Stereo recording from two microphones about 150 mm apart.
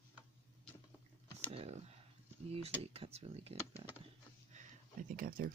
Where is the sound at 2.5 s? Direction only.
40° right (ahead or behind).